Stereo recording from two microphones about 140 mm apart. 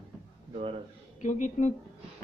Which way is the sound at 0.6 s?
40° right (ahead or behind).